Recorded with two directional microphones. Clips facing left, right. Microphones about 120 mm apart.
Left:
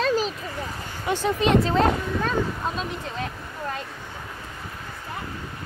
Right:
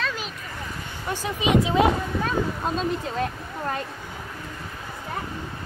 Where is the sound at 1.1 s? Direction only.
10° right (ahead or behind).